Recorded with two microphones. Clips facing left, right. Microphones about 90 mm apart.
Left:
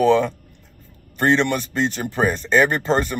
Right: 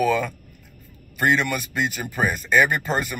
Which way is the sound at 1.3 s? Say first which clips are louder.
Left 4 dB; 30° left (ahead or behind).